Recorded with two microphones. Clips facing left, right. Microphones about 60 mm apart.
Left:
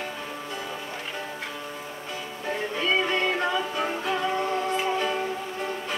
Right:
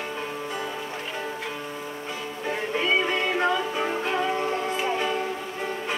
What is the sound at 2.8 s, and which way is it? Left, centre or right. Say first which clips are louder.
Music: even; centre.